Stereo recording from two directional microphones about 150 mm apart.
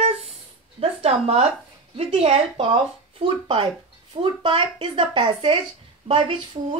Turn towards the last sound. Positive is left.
turn(degrees=-35)  # may be behind; listen again after turning